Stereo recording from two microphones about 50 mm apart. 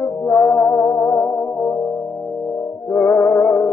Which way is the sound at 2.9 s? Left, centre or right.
Left.